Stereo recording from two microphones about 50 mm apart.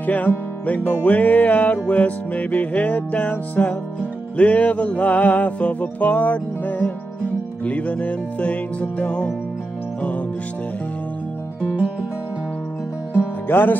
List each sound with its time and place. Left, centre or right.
0.0 s music: left
13.5 s music: left